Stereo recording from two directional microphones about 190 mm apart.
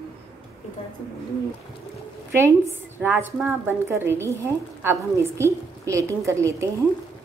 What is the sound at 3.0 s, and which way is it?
A woman's voice, 10° right (ahead or behind).